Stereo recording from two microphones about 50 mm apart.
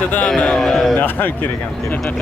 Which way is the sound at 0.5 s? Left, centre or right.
Centre.